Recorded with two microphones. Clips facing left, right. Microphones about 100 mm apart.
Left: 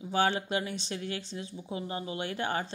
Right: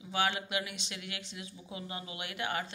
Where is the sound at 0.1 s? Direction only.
35° left (ahead or behind).